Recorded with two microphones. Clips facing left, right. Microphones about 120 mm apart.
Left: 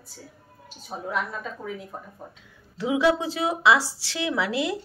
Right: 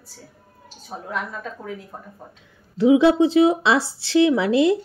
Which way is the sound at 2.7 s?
25° right (ahead or behind).